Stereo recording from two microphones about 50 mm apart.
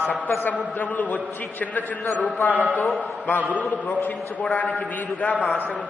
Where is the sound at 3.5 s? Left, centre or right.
Left.